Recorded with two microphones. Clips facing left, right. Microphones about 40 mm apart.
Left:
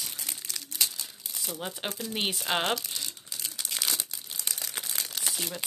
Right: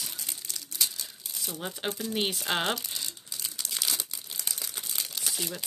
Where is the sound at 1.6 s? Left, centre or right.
Centre.